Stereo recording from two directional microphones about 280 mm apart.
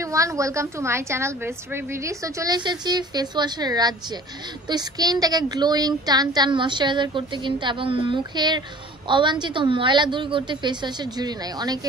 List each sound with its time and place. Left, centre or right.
0.0 s speech: centre